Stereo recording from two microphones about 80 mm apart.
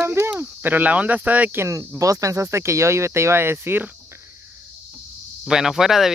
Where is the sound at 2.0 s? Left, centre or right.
Right.